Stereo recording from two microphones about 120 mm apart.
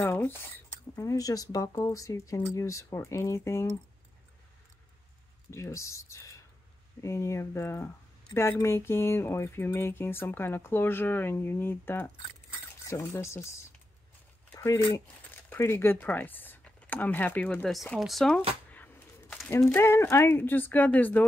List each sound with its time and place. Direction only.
0.0 s speech: 20° left (ahead or behind)
0.9 s speech: 30° left (ahead or behind)
5.5 s speech: 25° left (ahead or behind)
14.5 s a sound: 20° left (ahead or behind)
15.3 s speech: 15° left (ahead or behind)
17.9 s speech: centre (ahead or behind)
18.7 s bird: 15° left (ahead or behind)
19.5 s speech: 20° left (ahead or behind)